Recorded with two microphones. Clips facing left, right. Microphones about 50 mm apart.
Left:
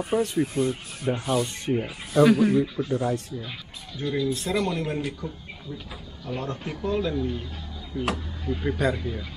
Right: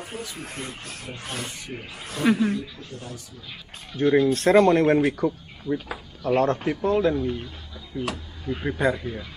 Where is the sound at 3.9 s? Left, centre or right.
Right.